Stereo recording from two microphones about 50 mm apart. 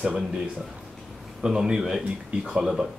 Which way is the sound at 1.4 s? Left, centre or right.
Centre.